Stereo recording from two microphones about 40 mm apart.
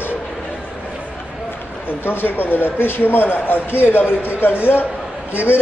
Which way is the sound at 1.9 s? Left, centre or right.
Left.